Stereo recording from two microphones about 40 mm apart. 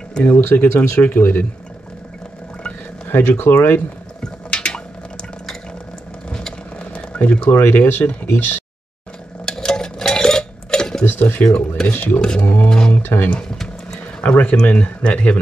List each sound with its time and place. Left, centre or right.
0.2 s speech: left
3.1 s speech: left
4.2 s a sound: left
6.8 s a sound: left
7.7 s speech: left
9.5 s dishes: centre
11.1 s speech: left
11.4 s speech: centre
11.9 s speech: left
12.6 s a sound: centre
12.9 s speech: left
13.9 s a sound: left
14.6 s speech: left